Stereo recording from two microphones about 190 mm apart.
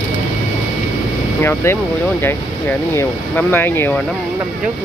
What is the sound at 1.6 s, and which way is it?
Speech, 15° left (ahead or behind).